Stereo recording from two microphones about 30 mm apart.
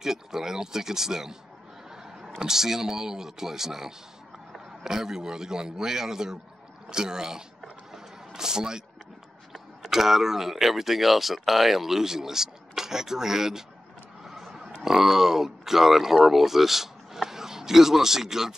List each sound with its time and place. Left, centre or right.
0.0 s speech: centre
9.8 s speech: centre